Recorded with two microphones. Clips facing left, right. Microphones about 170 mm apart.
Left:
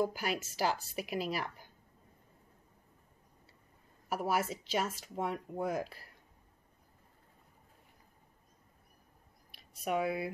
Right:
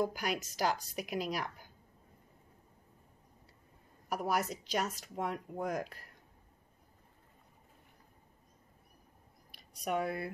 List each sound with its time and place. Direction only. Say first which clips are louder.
0.0 s speech: left 1 dB; 5° left (ahead or behind)
4.1 s speech: left 1 dB; 5° left (ahead or behind)
9.6 s speech: left 1 dB; 5° left (ahead or behind)